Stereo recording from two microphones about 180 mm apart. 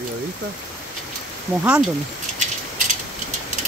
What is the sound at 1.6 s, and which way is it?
Speech, 5° right (ahead or behind).